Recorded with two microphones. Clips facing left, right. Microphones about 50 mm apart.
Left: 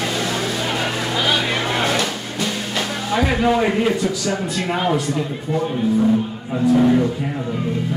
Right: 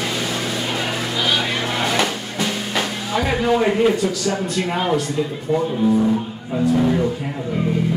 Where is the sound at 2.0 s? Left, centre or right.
Centre.